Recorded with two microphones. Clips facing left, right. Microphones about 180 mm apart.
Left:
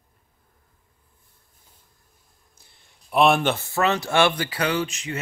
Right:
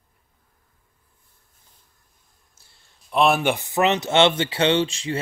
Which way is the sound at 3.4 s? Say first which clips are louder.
Right 2 dB; 15° right (ahead or behind).